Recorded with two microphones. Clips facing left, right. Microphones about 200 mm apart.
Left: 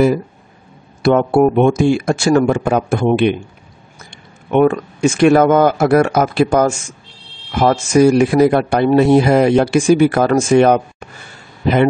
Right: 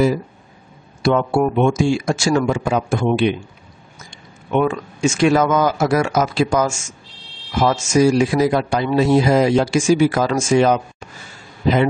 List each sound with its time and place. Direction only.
1.0 s speech: 55° left (ahead or behind)
4.5 s a man's voice: 60° left (ahead or behind)